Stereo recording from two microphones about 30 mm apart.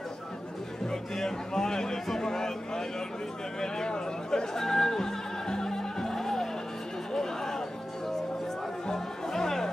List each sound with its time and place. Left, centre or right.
1.1 s a sound: centre
4.6 s music: centre
7.2 s chatter: centre
8.8 s music: centre